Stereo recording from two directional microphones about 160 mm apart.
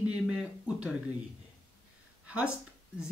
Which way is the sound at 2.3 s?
10° right (ahead or behind).